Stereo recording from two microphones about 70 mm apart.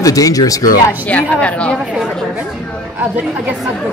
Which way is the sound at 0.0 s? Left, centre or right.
Left.